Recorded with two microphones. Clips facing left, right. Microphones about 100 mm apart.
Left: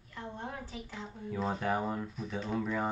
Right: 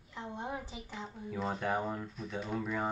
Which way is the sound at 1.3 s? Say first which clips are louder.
Left 2 dB; centre (ahead or behind).